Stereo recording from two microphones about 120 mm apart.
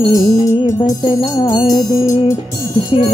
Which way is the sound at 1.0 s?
40° left (ahead or behind).